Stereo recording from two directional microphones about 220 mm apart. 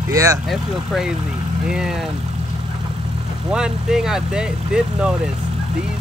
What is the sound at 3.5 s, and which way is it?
Speech, 5° right (ahead or behind).